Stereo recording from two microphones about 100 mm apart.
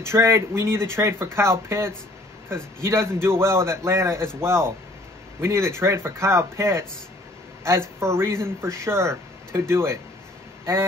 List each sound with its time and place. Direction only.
0.0 s speech: 25° right (ahead or behind)